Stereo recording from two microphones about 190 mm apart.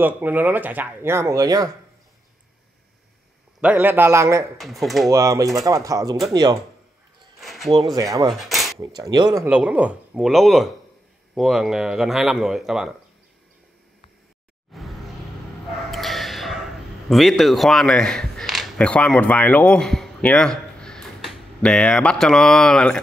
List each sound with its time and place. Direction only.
0.0 s speech: 10° right (ahead or behind)
3.6 s speech: 10° right (ahead or behind)
4.6 s speech: centre (ahead or behind)
5.1 s speech: 15° right (ahead or behind)
7.3 s a sound: centre (ahead or behind)
7.9 s speech: 20° right (ahead or behind)
8.3 s dishes: centre (ahead or behind)
8.7 s speech: 25° right (ahead or behind)
9.5 s speech: 5° right (ahead or behind)
14.7 s music: centre (ahead or behind)
15.9 s a sound: centre (ahead or behind)